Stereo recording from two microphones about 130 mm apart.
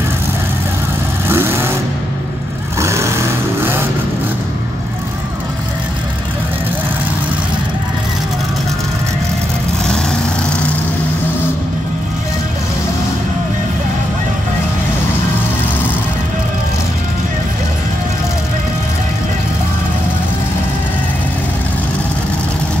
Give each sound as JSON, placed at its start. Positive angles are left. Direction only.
{"t": 1.3, "sound": "vehicle", "side_deg": -20}
{"t": 2.8, "sound": "vehicle", "side_deg": -20}